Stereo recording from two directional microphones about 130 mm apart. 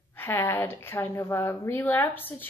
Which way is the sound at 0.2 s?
15° left (ahead or behind).